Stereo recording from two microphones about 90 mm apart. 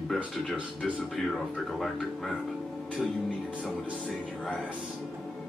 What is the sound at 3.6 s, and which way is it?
Speech, 10° left (ahead or behind).